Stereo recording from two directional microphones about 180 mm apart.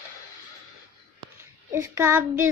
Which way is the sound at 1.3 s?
15° right (ahead or behind).